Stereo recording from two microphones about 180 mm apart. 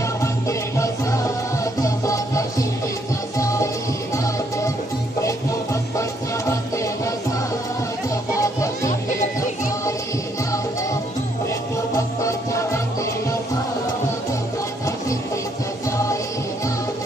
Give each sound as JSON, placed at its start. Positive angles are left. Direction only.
{"t": 0.2, "sound": "music", "side_deg": 15}
{"t": 8.4, "sound": "music", "side_deg": 20}
{"t": 10.5, "sound": "music", "side_deg": 20}